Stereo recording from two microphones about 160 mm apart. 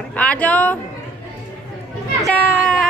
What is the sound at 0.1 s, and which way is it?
Speech, 10° left (ahead or behind).